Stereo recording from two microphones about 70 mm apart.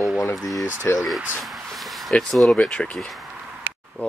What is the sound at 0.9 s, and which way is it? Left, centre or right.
Speech, left.